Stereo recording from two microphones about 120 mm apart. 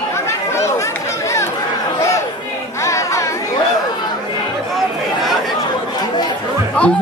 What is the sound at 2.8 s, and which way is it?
Chatter, 25° left (ahead or behind).